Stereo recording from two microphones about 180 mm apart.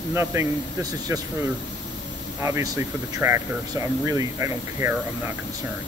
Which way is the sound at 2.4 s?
15° right (ahead or behind).